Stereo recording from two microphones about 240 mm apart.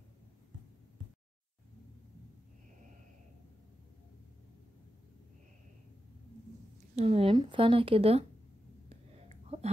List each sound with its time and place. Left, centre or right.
7.0 s speech: right